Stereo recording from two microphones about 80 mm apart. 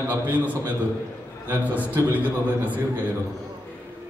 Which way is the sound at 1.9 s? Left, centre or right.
Right.